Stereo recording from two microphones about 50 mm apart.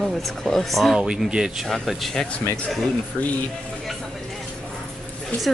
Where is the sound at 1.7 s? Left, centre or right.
Centre.